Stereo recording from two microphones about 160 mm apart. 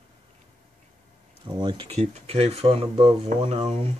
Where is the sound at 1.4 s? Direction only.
30° right (ahead or behind).